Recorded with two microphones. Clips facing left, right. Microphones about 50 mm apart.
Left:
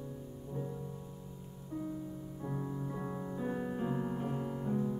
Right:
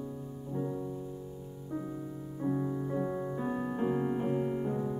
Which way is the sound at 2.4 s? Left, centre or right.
Centre.